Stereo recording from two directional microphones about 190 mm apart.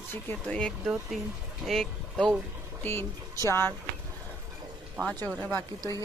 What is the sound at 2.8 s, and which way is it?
Speech, 15° left (ahead or behind).